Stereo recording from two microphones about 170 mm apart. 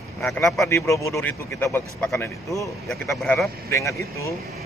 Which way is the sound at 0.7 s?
20° left (ahead or behind).